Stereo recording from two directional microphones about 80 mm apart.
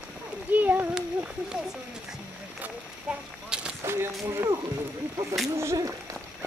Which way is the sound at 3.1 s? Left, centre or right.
Centre.